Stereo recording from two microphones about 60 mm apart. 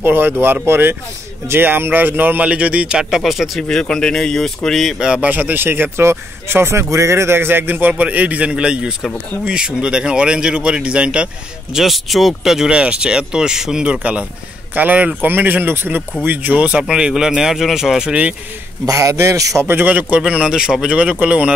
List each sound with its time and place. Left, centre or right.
0.0 s speech: right
2.4 s speech: right; by 3.6 s centre
3.6 s speech: centre
5.0 s speech: centre
5.3 s speech: right
11.7 s speech: centre
14.7 s speech: right
16.8 s speech: centre
18.9 s a man's voice: right
19.7 s speech: right